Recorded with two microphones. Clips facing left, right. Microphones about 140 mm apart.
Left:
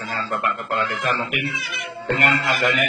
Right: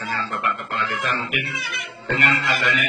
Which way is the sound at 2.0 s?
50° left (ahead or behind).